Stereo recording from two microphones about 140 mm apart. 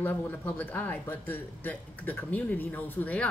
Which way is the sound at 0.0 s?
15° left (ahead or behind).